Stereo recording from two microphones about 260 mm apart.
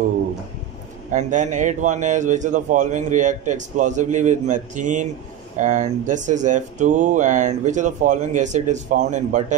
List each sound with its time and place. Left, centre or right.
1.1 s speech: right